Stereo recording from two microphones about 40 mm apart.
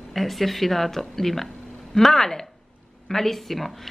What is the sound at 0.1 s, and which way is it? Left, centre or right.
Speech, centre.